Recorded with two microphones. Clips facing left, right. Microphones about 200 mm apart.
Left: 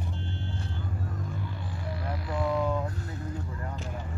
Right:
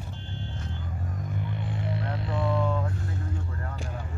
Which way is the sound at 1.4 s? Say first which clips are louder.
Right 4 dB; 20° right (ahead or behind).